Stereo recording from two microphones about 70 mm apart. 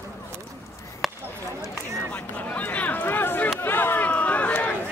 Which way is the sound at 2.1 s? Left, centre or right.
Left.